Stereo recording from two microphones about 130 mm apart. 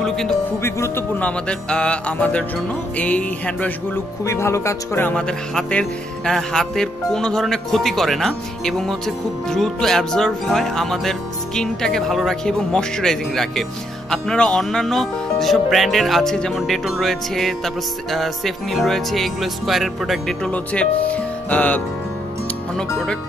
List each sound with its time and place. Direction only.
0.0 s speech: 5° left (ahead or behind)
0.5 s speech: 20° left (ahead or behind)
1.2 s music: 5° left (ahead or behind)
4.2 s speech: 20° left (ahead or behind); by 23.1 s 5° left (ahead or behind)